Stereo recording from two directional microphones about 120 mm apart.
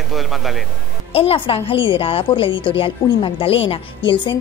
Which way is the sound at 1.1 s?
50° left (ahead or behind).